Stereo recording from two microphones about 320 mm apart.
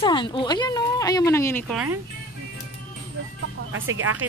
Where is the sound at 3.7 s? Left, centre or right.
Right.